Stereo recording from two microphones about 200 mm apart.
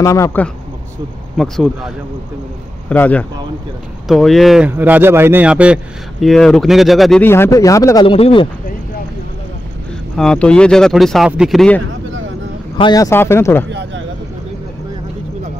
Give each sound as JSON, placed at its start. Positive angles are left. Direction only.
{"t": 0.0, "sound": "a man's voice", "side_deg": 15}
{"t": 1.3, "sound": "speech", "side_deg": 0}
{"t": 2.9, "sound": "a man's voice", "side_deg": 5}
{"t": 10.1, "sound": "speech", "side_deg": 5}
{"t": 12.7, "sound": "a man's voice", "side_deg": 20}
{"t": 13.7, "sound": "speech", "side_deg": -60}